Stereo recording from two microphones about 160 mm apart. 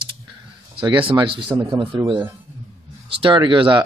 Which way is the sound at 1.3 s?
35° right (ahead or behind).